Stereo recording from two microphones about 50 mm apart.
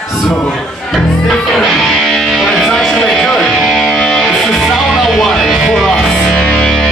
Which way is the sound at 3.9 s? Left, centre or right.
Centre.